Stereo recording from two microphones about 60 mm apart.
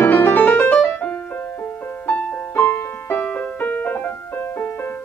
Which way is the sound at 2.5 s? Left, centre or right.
Left.